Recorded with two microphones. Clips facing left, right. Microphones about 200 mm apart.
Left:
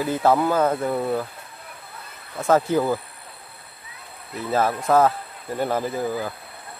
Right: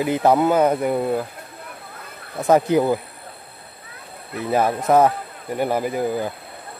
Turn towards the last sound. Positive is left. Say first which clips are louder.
# right 3 dB
turn(degrees=-20)  # may be behind; listen again after turning